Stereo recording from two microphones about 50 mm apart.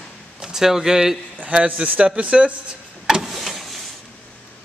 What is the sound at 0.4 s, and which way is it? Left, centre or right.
Speech, centre.